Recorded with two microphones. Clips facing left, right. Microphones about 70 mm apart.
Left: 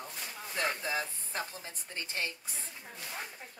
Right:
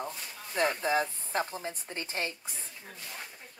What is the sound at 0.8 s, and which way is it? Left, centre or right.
Speech, right.